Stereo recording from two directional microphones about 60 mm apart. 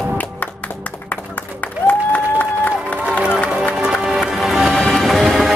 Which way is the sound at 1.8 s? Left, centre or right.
Left.